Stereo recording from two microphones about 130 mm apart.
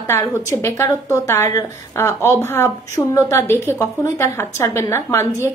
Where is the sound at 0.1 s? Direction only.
25° left (ahead or behind).